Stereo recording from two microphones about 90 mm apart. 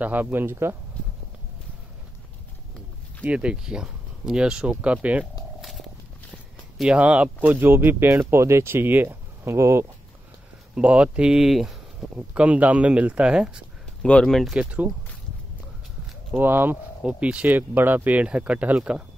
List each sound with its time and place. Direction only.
0.0 s speech: 20° right (ahead or behind)
3.3 s speech: 10° right (ahead or behind)
5.6 s a sound: centre (ahead or behind)
6.8 s speech: 10° right (ahead or behind); by 9.8 s 30° right (ahead or behind)
10.7 s speech: 15° right (ahead or behind)
12.2 s speech: 15° right (ahead or behind)
14.0 s speech: 10° left (ahead or behind)
14.5 s speech: 15° right (ahead or behind)
16.3 s speech: 25° right (ahead or behind)